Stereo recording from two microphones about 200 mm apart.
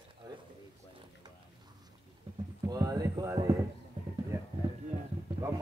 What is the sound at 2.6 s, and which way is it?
Speech, 20° right (ahead or behind).